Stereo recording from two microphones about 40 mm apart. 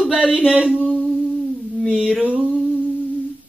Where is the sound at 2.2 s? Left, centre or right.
Right.